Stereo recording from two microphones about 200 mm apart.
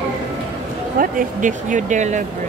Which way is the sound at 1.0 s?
40° right (ahead or behind).